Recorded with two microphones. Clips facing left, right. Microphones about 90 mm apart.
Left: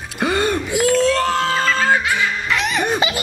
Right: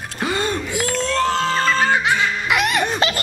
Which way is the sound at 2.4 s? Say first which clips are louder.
Right 4 dB; 5° right (ahead or behind).